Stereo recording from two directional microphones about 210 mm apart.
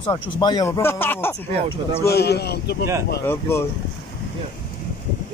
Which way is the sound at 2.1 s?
50° left (ahead or behind).